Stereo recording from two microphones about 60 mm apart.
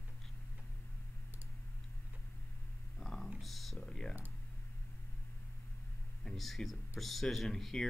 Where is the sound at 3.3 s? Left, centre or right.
Centre.